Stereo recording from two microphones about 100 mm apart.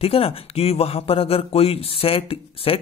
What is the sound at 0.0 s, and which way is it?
Speech, 75° left (ahead or behind).